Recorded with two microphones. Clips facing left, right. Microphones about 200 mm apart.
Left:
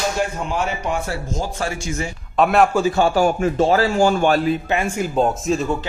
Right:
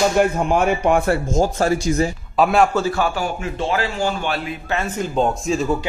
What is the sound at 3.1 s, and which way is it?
A man's voice, 45° left (ahead or behind).